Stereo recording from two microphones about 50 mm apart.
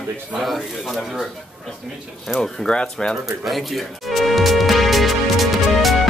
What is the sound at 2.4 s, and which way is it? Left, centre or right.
Speech, centre.